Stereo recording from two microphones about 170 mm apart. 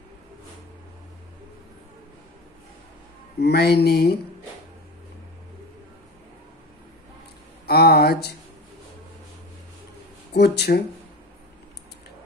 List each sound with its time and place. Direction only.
3.3 s speech: 75° left (ahead or behind)
7.6 s speech: 70° left (ahead or behind)
10.3 s speech: 75° left (ahead or behind)